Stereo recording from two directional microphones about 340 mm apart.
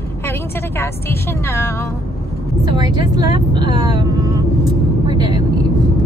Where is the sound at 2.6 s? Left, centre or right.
Centre.